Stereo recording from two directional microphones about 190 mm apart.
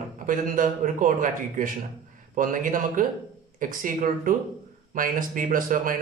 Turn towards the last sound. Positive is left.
turn(degrees=-45)  # may be behind; listen again after turning